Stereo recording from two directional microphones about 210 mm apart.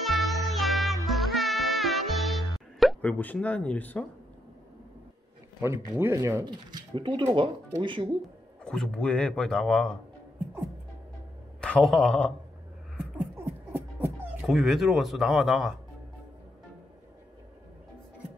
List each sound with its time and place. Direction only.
0.0 s music: centre (ahead or behind)
5.6 s speech: 10° right (ahead or behind)
8.6 s speech: 5° left (ahead or behind)
11.6 s a man's voice: centre (ahead or behind)
12.9 s a sound: 5° right (ahead or behind)